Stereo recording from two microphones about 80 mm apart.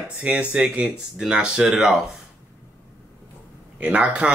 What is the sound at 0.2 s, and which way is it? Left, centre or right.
Speech, centre.